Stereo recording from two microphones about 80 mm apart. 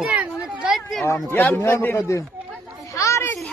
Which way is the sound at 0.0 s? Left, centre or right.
Centre.